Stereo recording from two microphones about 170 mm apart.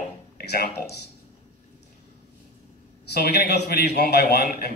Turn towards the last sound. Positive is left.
turn(degrees=70)  # may be behind; listen again after turning